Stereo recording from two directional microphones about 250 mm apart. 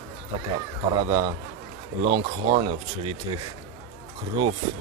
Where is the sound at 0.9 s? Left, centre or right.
Centre.